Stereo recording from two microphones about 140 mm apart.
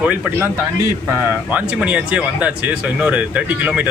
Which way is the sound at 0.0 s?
10° right (ahead or behind).